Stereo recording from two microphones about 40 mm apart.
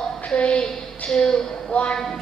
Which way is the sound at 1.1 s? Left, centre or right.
Centre.